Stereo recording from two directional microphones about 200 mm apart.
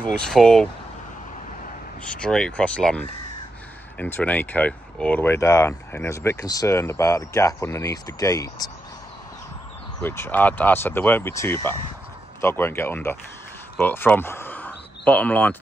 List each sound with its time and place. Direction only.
0.0 s speech: 5° left (ahead or behind)
2.1 s speech: 5° left (ahead or behind)
4.0 s speech: 10° left (ahead or behind)
10.0 s speech: 10° left (ahead or behind)